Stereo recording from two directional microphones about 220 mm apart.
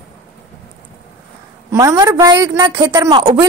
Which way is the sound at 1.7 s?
15° right (ahead or behind).